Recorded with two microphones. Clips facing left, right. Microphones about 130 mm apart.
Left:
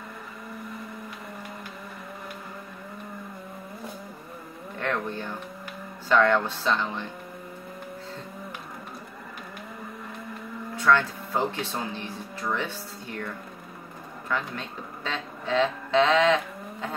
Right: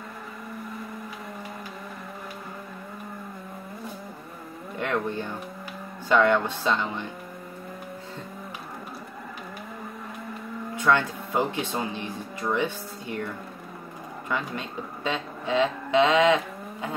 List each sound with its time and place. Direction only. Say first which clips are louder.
4.7 s speech: right 2 dB; 15° right (ahead or behind)
10.8 s speech: left 1 dB; 15° right (ahead or behind)
14.3 s speech: right 1 dB; 15° right (ahead or behind)